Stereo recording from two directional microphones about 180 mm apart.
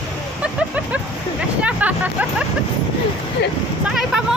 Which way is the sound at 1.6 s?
10° right (ahead or behind).